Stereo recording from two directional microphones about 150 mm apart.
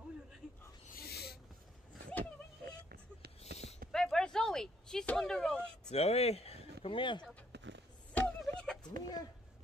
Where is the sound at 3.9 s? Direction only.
5° left (ahead or behind).